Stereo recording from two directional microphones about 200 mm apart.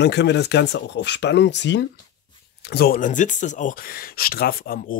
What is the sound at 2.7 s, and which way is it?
Speech, 50° left (ahead or behind).